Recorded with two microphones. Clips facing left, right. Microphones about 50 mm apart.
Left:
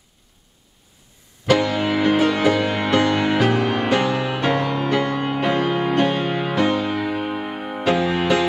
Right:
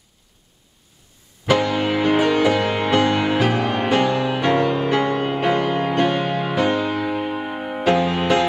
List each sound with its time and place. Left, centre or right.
1.4 s music: centre
2.9 s music: centre
3.3 s music: centre
4.8 s music: centre
5.5 s music: centre